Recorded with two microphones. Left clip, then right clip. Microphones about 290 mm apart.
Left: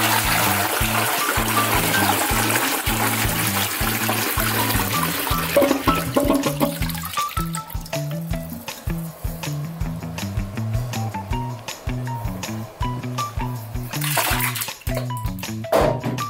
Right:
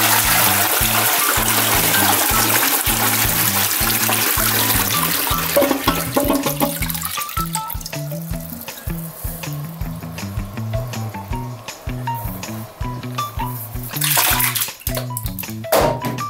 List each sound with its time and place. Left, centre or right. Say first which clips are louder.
0.0 s music: right 3 dB; centre
12.8 s music: right 1 dB; centre
13.9 s bathtub: right 4 dB; centre
15.7 s music: right 2 dB; centre